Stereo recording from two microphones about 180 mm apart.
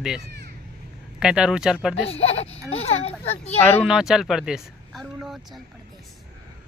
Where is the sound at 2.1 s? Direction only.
35° left (ahead or behind).